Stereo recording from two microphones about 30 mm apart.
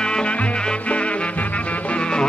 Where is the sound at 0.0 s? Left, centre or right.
Left.